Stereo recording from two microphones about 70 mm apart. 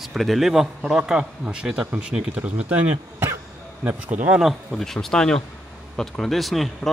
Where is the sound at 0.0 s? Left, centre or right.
Centre.